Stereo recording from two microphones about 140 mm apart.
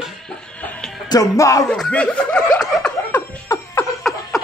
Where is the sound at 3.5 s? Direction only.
15° left (ahead or behind).